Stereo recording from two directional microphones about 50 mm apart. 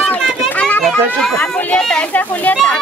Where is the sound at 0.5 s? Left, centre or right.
Left.